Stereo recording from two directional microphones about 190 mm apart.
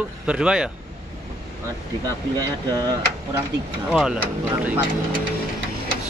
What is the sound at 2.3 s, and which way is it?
Speech, 20° right (ahead or behind).